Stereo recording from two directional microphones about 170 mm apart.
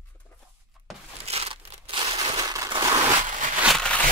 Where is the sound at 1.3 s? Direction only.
35° right (ahead or behind).